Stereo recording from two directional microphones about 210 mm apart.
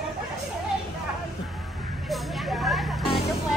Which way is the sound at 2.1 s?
Centre (ahead or behind).